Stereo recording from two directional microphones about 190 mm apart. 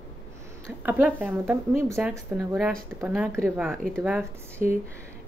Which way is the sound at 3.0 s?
10° right (ahead or behind).